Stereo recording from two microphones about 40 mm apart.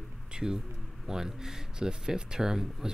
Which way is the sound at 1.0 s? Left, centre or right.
Centre.